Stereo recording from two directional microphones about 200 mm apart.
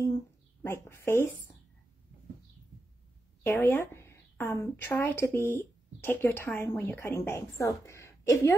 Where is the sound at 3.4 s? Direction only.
10° left (ahead or behind).